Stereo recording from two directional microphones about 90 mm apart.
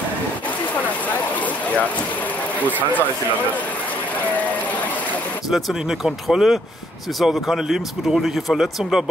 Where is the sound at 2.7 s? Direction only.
20° left (ahead or behind).